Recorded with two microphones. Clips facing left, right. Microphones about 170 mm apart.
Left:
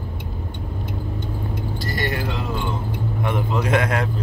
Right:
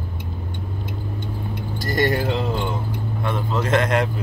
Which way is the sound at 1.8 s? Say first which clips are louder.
Right 7 dB; 45° right (ahead or behind).